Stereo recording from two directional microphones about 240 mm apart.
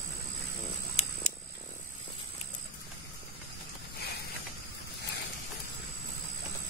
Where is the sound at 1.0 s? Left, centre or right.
Left.